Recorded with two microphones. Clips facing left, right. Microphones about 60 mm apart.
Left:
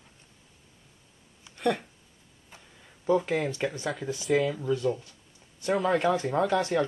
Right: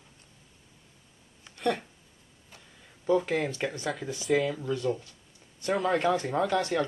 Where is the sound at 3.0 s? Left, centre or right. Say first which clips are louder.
Left 1 dB; centre.